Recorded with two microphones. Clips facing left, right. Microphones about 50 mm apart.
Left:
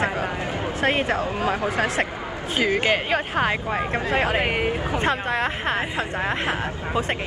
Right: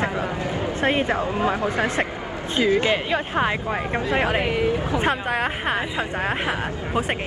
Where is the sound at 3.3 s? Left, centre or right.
Left.